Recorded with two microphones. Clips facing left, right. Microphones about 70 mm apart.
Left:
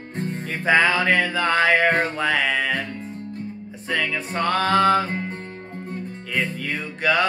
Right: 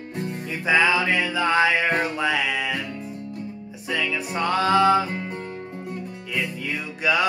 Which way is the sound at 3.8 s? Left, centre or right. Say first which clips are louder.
Left 1 dB; left.